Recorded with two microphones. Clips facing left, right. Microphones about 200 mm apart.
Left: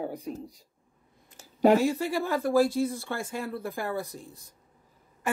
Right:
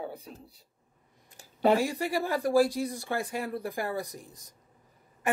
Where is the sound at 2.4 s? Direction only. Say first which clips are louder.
Left 1 dB; 15° right (ahead or behind).